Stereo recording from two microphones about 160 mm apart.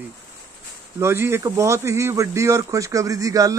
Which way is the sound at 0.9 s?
15° right (ahead or behind).